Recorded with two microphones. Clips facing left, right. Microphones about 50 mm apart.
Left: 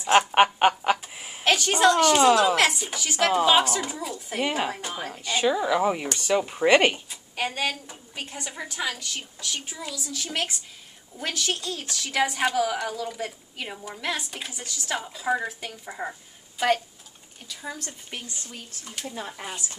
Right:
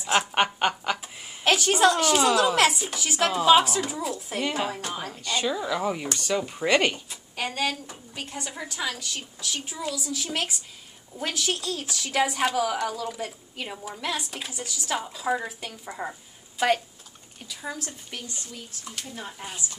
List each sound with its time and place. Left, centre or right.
0.3 s a sound: centre
1.4 s a woman's voice: centre
2.1 s speech: centre
2.5 s a woman's voice: centre
4.4 s speech: centre
7.1 s a woman's voice: centre
19.1 s a woman's voice: left